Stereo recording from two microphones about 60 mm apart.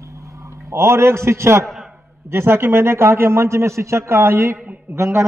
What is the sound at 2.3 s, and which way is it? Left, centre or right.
A man's voice, right.